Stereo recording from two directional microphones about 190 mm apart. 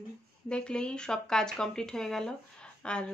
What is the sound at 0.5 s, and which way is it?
Speech, 5° left (ahead or behind).